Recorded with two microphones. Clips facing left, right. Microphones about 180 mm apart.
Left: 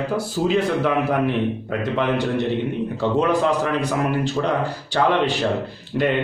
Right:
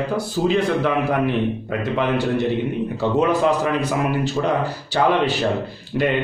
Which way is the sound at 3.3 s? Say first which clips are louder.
Right 1 dB; 5° right (ahead or behind).